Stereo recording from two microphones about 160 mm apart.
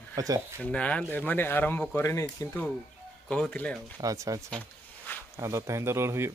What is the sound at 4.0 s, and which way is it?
Speech, 20° right (ahead or behind).